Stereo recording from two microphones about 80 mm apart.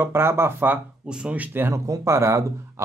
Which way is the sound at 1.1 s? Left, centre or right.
Centre.